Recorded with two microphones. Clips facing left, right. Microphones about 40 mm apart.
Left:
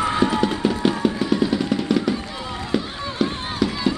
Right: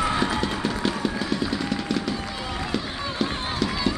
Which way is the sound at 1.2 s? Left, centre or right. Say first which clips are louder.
Left 6 dB; centre.